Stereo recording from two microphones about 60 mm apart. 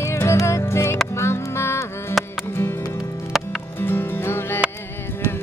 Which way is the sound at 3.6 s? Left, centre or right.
Left.